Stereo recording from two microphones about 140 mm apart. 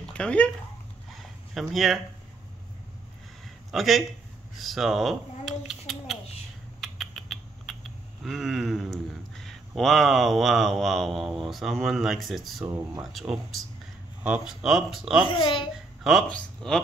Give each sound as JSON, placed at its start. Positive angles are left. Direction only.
{"t": 0.0, "sound": "a sound", "side_deg": 5}
{"t": 1.5, "sound": "speech", "side_deg": 0}
{"t": 3.7, "sound": "a child's voice", "side_deg": 0}
{"t": 6.8, "sound": "rodents", "side_deg": 0}
{"t": 12.6, "sound": "speech", "side_deg": -15}
{"t": 14.2, "sound": "speech", "side_deg": -5}
{"t": 15.2, "sound": "a child's voice", "side_deg": 35}
{"t": 15.7, "sound": "speech", "side_deg": 0}